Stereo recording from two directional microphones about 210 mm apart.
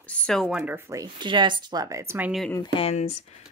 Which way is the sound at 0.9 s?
20° right (ahead or behind).